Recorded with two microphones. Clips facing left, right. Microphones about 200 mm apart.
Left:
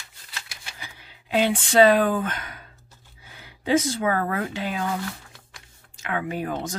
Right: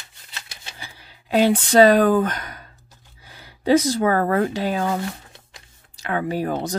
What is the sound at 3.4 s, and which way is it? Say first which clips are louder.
Speech: right 5 dB; 40° right (ahead or behind).